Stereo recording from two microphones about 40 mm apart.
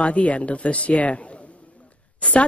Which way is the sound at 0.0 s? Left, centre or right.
Left.